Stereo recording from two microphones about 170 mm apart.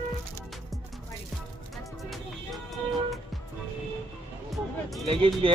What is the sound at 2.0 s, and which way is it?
Music, centre (ahead or behind).